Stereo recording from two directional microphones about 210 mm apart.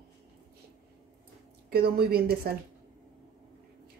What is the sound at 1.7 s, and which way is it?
Speech, 50° right (ahead or behind).